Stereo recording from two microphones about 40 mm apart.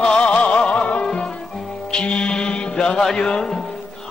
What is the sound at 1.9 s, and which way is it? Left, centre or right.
Mantra, left.